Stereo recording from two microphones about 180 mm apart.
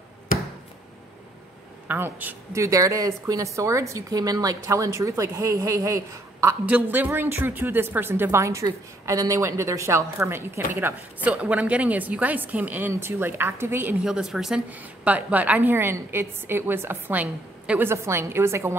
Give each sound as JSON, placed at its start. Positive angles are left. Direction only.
{"t": 1.9, "sound": "a woman's voice", "side_deg": -10}